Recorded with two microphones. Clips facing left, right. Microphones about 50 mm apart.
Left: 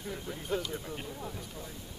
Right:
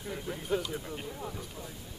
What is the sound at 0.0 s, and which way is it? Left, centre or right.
Speech, centre.